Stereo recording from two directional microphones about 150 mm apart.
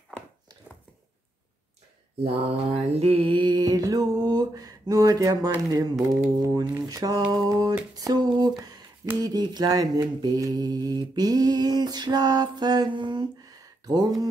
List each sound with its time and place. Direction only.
2.2 s mantra: 45° right (ahead or behind); by 7.7 s 25° right (ahead or behind)
7.9 s a sound: 25° right (ahead or behind)
9.2 s mantra: 25° right (ahead or behind)